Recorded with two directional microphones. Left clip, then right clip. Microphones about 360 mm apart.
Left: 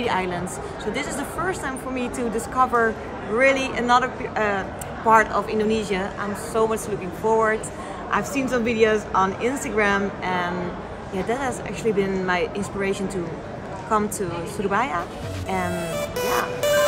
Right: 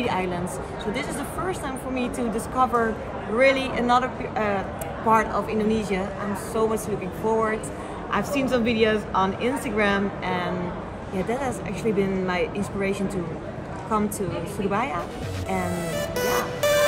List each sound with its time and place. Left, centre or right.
0.0 s a woman's voice: centre
1.5 s a woman's voice: centre